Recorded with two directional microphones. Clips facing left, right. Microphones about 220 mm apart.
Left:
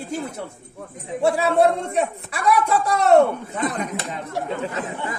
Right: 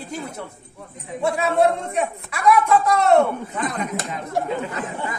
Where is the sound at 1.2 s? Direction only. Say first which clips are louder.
Left 1 dB; 30° left (ahead or behind).